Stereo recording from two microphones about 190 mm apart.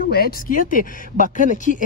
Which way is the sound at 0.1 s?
50° left (ahead or behind).